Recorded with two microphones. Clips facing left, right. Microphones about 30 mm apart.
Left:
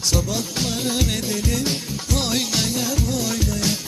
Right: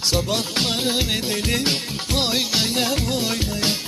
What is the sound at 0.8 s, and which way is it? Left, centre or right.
Music, right.